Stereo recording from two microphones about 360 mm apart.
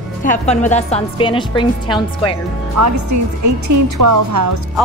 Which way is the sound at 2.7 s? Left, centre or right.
Right.